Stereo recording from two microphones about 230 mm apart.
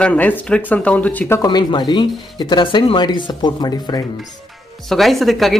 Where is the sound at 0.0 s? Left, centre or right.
Centre.